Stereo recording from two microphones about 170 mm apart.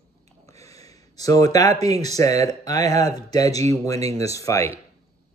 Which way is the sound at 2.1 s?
20° left (ahead or behind).